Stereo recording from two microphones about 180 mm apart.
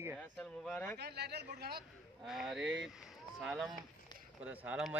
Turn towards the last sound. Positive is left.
turn(degrees=-5)  # may be behind; listen again after turning